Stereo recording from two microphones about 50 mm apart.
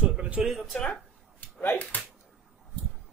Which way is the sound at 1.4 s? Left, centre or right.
Left.